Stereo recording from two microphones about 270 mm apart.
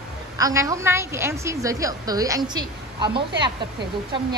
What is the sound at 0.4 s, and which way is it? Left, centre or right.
A woman's voice, centre.